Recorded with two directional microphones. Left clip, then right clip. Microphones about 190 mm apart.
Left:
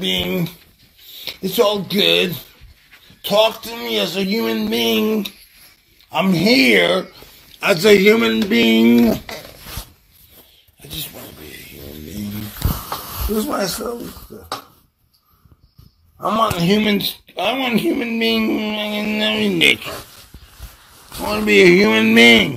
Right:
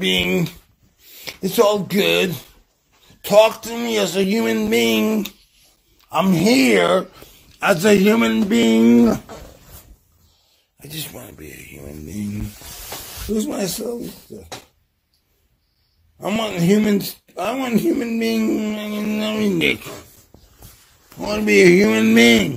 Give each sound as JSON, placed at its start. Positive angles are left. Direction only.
{"t": 0.3, "sound": "speech", "side_deg": -50}
{"t": 1.0, "sound": "speech", "side_deg": -35}
{"t": 6.3, "sound": "speech", "side_deg": -15}
{"t": 8.5, "sound": "speech", "side_deg": 0}
{"t": 13.4, "sound": "speech", "side_deg": -35}
{"t": 16.5, "sound": "speech", "side_deg": -15}
{"t": 21.2, "sound": "speech", "side_deg": 0}
{"t": 21.5, "sound": "speech", "side_deg": -15}